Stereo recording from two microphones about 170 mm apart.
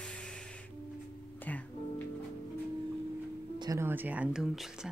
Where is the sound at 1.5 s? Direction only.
10° left (ahead or behind).